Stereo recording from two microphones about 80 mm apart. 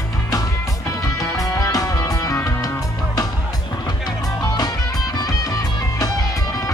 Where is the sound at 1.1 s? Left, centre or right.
Left.